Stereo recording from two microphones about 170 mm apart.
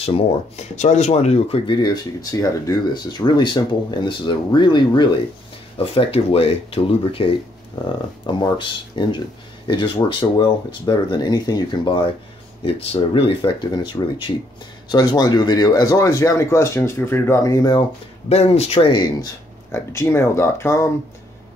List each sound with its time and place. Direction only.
0.7 s speech: 45° left (ahead or behind); by 17.8 s 20° left (ahead or behind)
18.3 s speech: 40° left (ahead or behind)
19.7 s speech: 15° left (ahead or behind)